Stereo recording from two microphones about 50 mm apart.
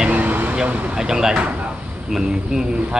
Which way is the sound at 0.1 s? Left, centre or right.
Right.